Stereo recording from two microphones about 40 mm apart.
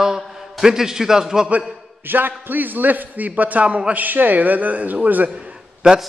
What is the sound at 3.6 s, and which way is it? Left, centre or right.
Speech, right.